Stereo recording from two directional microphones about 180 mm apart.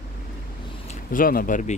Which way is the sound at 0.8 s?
50° left (ahead or behind).